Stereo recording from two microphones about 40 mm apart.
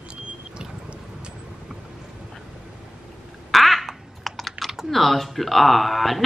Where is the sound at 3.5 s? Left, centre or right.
Centre.